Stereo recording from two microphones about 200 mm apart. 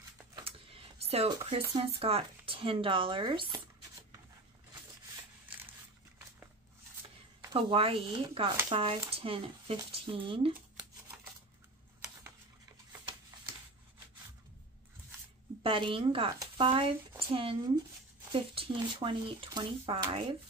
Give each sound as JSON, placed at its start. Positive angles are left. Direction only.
{"t": 0.4, "sound": "a sound", "side_deg": -30}
{"t": 1.3, "sound": "speech", "side_deg": -15}
{"t": 1.8, "sound": "speech", "side_deg": -30}
{"t": 7.5, "sound": "speech", "side_deg": -30}
{"t": 15.6, "sound": "speech", "side_deg": -25}